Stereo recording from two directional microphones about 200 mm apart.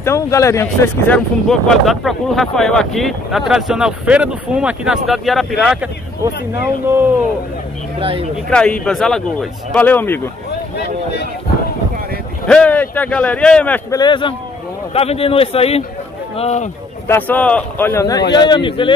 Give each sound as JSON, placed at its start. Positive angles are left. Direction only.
{"t": 0.0, "sound": "speech", "side_deg": 15}
{"t": 6.2, "sound": "speech", "side_deg": -10}
{"t": 8.0, "sound": "speech", "side_deg": -25}
{"t": 8.5, "sound": "speech", "side_deg": 5}
{"t": 12.4, "sound": "speech", "side_deg": 5}
{"t": 13.9, "sound": "a man's voice", "side_deg": 25}
{"t": 17.1, "sound": "a man's voice", "side_deg": 10}